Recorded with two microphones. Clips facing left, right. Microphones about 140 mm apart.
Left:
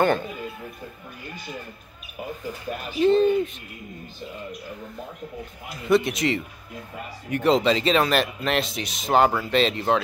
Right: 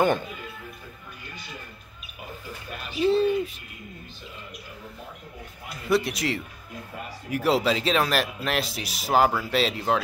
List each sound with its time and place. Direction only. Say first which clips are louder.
3.0 s speech: left 3 dB; 5° right (ahead or behind)
5.9 s speech: left 4 dB; centre (ahead or behind)